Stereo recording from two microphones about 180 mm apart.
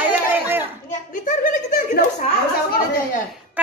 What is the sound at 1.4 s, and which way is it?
Chuckle, 50° left (ahead or behind).